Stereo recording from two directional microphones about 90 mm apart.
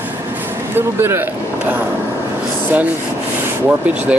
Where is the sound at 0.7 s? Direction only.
25° right (ahead or behind).